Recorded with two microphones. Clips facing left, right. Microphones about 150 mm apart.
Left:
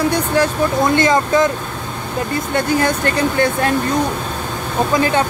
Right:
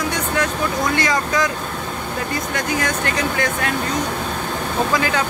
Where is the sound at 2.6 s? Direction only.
30° left (ahead or behind).